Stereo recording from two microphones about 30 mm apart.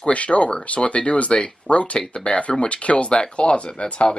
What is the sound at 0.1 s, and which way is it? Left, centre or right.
Speech, left.